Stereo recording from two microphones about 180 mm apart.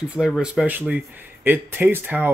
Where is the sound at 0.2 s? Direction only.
5° right (ahead or behind).